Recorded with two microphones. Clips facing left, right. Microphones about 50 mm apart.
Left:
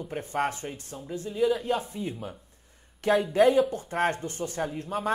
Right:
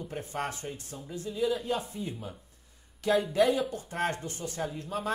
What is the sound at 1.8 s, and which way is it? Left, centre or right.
Speech, left.